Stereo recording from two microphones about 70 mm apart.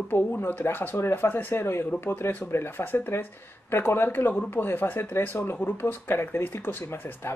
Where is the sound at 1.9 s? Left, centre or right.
Left.